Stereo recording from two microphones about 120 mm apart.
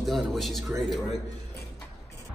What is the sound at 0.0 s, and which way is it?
Speech, centre (ahead or behind).